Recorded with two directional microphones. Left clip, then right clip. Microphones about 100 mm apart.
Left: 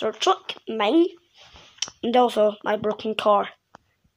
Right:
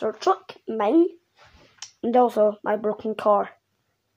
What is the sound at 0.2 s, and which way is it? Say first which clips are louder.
Speech: left 2 dB; 15° right (ahead or behind).